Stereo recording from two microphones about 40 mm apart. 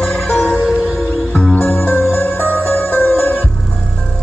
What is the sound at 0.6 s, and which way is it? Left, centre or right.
Music, centre.